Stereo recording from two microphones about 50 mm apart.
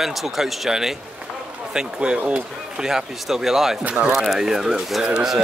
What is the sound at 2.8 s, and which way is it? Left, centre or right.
Speech, centre.